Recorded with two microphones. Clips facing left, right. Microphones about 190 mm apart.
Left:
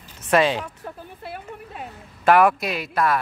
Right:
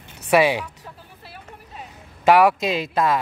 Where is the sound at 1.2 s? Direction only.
55° left (ahead or behind).